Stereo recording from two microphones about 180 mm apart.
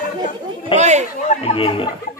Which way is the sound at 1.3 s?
35° left (ahead or behind).